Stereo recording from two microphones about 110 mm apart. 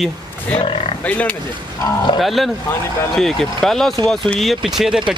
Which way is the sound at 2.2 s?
Centre (ahead or behind).